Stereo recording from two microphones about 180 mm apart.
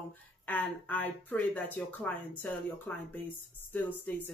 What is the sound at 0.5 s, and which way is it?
Speech, 10° left (ahead or behind).